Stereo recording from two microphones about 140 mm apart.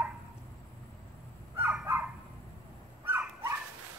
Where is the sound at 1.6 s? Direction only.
5° right (ahead or behind).